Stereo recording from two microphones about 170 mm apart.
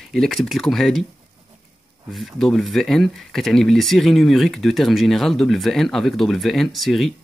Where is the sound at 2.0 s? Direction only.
Centre (ahead or behind).